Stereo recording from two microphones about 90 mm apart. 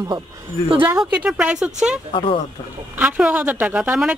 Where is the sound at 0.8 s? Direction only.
15° right (ahead or behind).